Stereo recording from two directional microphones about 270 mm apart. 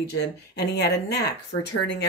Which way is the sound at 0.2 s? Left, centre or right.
Left.